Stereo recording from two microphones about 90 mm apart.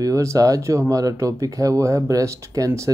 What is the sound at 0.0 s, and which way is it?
Speech, 35° right (ahead or behind).